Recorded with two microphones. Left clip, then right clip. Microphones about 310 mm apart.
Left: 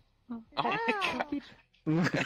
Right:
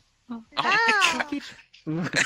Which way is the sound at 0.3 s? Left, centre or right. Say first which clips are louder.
Right 8 dB; right.